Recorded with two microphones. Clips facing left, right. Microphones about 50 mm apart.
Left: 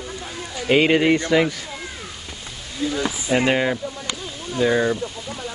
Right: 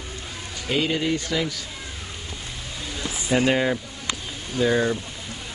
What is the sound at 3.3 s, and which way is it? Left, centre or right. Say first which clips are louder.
Speech: left 1 dB; centre.